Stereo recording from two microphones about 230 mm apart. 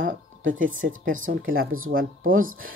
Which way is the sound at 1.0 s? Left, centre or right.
Right.